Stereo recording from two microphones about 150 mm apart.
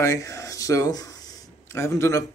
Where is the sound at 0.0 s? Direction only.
20° left (ahead or behind).